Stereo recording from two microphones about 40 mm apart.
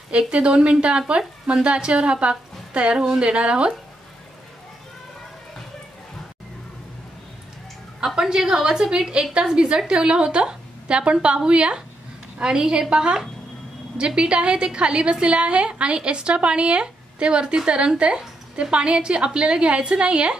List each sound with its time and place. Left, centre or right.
0.1 s a woman's voice: right
0.5 s a woman's voice: centre
8.2 s a woman's voice: centre; by 20.3 s right